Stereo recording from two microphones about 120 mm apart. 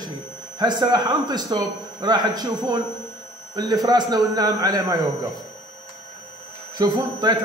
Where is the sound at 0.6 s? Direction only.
40° right (ahead or behind).